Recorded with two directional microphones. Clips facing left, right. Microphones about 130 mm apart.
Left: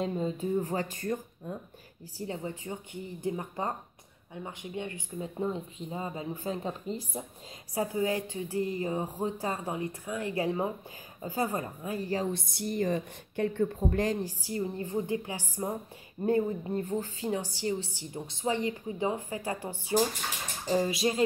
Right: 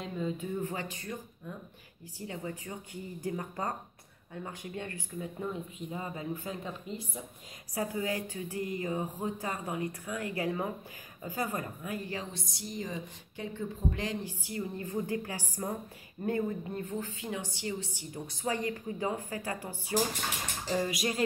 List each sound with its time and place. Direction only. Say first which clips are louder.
0.0 s a woman's voice: left 4 dB; 35° left (ahead or behind)
12.3 s a woman's voice: left 9 dB; 55° left (ahead or behind); by 21.2 s 25° left (ahead or behind)